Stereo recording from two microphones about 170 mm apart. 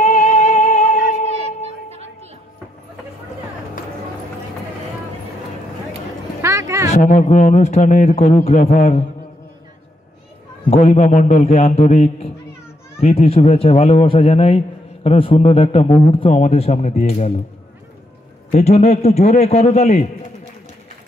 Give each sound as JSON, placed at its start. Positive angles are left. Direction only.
{"t": 0.0, "sound": "music", "side_deg": 40}
{"t": 6.4, "sound": "a sound", "side_deg": -15}
{"t": 6.9, "sound": "speech", "side_deg": 45}
{"t": 10.7, "sound": "speech", "side_deg": 40}
{"t": 18.5, "sound": "speech", "side_deg": 40}